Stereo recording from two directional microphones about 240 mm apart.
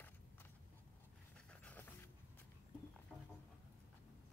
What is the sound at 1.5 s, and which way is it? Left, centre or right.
Pant, centre.